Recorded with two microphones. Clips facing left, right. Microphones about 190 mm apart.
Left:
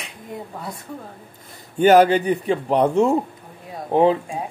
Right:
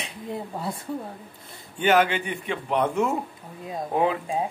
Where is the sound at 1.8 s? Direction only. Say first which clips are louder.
Left 8 dB; 40° left (ahead or behind).